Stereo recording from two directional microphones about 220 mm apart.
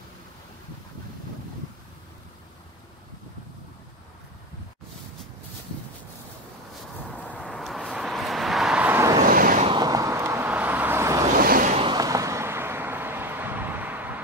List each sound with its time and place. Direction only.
7.2 s vehicle: centre (ahead or behind)
9.2 s vehicle: 40° right (ahead or behind)
9.7 s vehicle: 20° right (ahead or behind)
11.3 s a sound: 40° right (ahead or behind)
11.8 s vehicle: 20° right (ahead or behind)